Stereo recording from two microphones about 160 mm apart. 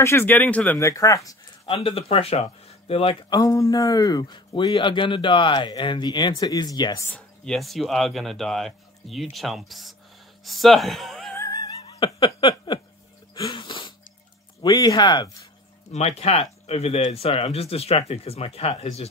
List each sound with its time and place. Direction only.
0.0 s speech: 15° left (ahead or behind)
1.7 s speech: 35° left (ahead or behind)
3.3 s speech: 20° left (ahead or behind)
7.1 s speech: 5° left (ahead or behind)
11.3 s cat: 20° left (ahead or behind)
13.3 s sneeze: 30° left (ahead or behind)
14.6 s speech: 25° left (ahead or behind)
15.9 s speech: 40° left (ahead or behind)